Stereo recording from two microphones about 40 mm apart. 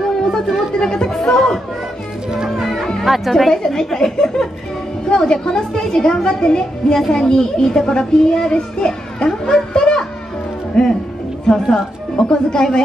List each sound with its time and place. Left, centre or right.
0.0 s chatter: centre
1.0 s chatter: centre
1.3 s speech: centre
2.5 s music: centre
3.1 s a woman's voice: centre